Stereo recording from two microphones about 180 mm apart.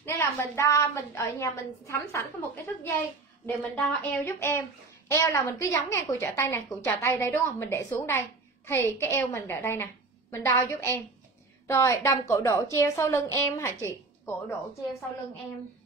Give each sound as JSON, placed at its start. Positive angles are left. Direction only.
{"t": 0.0, "sound": "speech", "side_deg": 15}